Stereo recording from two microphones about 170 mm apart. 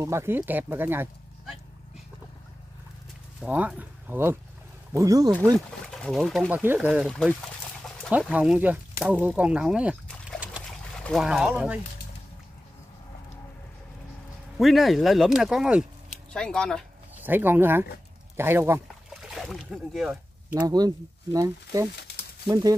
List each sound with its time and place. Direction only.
0.0 s speech: 15° right (ahead or behind)
3.4 s speech: 10° right (ahead or behind)
5.9 s speech: centre (ahead or behind)
6.5 s speech: 10° right (ahead or behind)
7.1 s speech: centre (ahead or behind)
10.6 s pour: 5° right (ahead or behind)
11.1 s speech: centre (ahead or behind)
14.6 s speech: centre (ahead or behind)
17.2 s speech: 10° right (ahead or behind)
19.2 s boat: centre (ahead or behind)
20.5 s speech: 25° right (ahead or behind)